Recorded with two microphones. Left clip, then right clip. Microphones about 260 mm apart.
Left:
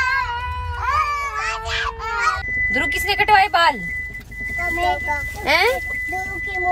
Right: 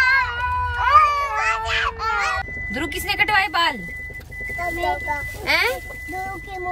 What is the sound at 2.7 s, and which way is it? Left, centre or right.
Vehicle, centre.